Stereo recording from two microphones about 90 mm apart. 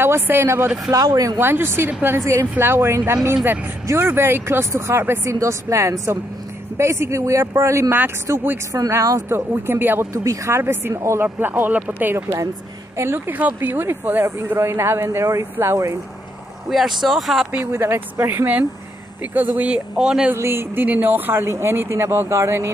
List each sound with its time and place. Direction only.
0.0 s speech: 25° right (ahead or behind)
0.9 s speech: 40° right (ahead or behind)
1.4 s a man's voice: 25° right (ahead or behind)
9.5 s speech: 25° right (ahead or behind)
10.2 s speech: 35° right (ahead or behind)
16.6 s speech: centre (ahead or behind)
17.5 s a man's voice: 25° right (ahead or behind); by 20.3 s 10° right (ahead or behind)
20.3 s speech: 25° right (ahead or behind)